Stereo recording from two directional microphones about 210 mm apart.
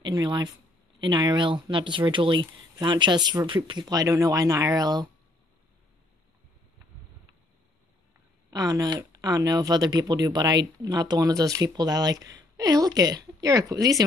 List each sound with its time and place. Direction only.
0.0 s speech: 20° right (ahead or behind)
8.5 s speech: 15° right (ahead or behind)